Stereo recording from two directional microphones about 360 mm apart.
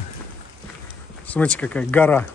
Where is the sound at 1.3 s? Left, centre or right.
Centre.